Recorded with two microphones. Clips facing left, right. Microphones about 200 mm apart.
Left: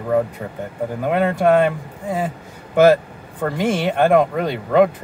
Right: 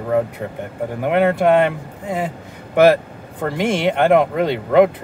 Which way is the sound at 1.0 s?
20° right (ahead or behind).